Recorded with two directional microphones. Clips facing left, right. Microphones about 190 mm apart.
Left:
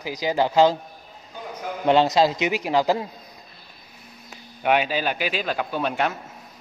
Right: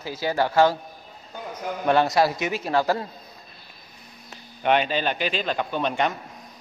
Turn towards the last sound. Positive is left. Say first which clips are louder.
# even
turn(degrees=5)  # may be behind; listen again after turning